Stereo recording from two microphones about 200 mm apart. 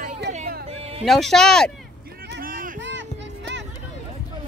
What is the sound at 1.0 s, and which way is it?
Speech, centre (ahead or behind).